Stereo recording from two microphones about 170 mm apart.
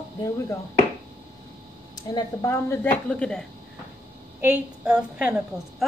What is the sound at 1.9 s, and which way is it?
A woman's voice, 20° left (ahead or behind).